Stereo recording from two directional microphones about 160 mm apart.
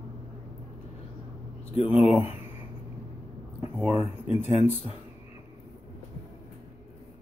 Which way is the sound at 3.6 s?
5° right (ahead or behind).